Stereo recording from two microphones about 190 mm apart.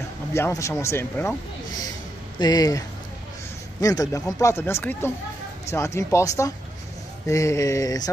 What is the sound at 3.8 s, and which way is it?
A man's voice, 20° left (ahead or behind).